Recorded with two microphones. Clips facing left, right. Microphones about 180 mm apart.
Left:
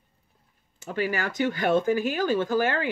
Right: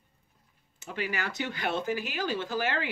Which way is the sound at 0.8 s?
45° left (ahead or behind).